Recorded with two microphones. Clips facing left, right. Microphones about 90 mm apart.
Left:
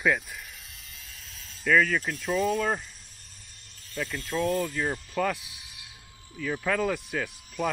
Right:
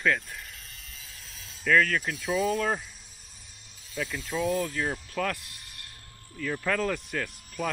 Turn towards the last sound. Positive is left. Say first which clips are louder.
# left 2 dB
turn(degrees=5)  # may be behind; listen again after turning